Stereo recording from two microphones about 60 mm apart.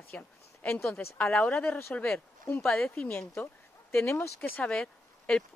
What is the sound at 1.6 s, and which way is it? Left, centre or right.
Speech, left.